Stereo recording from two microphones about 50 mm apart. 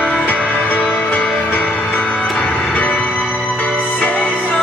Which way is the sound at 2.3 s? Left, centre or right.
Left.